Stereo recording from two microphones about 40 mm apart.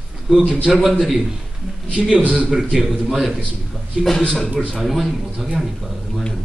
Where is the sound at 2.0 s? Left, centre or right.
Right.